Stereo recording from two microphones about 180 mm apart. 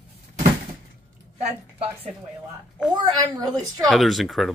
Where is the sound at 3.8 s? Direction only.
Centre (ahead or behind).